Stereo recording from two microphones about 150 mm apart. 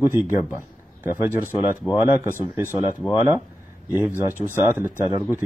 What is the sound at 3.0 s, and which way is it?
Speech, 15° left (ahead or behind).